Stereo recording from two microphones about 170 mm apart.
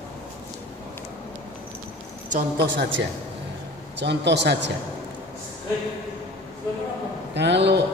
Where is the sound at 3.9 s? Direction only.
90° right.